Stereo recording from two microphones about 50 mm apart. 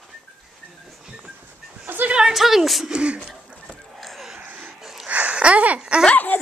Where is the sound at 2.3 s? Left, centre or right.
Centre.